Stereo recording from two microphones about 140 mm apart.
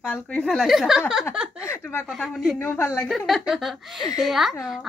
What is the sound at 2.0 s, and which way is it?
Speech, 5° left (ahead or behind).